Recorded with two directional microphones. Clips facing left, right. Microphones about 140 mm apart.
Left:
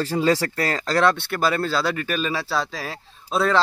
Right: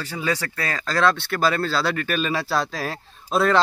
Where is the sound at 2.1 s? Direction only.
Centre (ahead or behind).